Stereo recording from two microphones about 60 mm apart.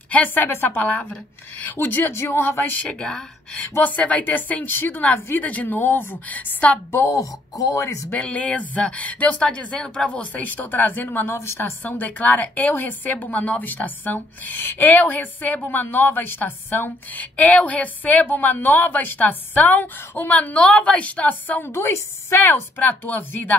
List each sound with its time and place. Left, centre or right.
0.1 s a woman's voice: left
2.8 s speech: centre
3.7 s a woman's voice: left
7.1 s speech: left
8.1 s a woman's voice: left
11.3 s a woman's voice: left
11.8 s a woman's voice: left
21.6 s speech: left